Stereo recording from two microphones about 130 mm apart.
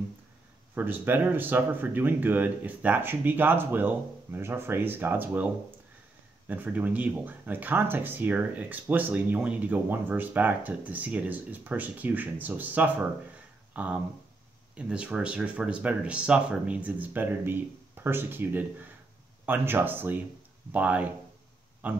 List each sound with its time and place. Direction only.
0.7 s speech: 15° right (ahead or behind)